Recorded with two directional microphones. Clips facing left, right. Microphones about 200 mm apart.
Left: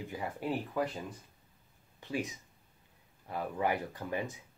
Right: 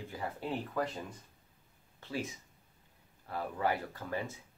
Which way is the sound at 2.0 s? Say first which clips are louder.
Left 2 dB; 15° left (ahead or behind).